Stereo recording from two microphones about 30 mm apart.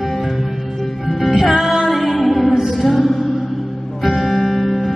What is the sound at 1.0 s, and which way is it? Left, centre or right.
Music, centre.